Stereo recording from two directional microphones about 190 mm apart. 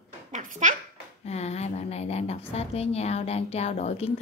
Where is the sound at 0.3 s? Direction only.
40° right (ahead or behind).